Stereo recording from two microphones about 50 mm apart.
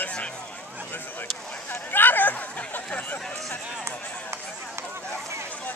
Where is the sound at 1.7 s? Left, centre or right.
Left.